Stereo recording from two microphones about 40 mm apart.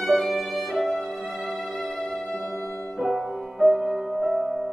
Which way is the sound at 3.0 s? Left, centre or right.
Centre.